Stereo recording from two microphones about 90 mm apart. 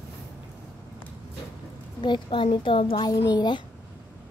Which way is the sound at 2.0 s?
60° left (ahead or behind).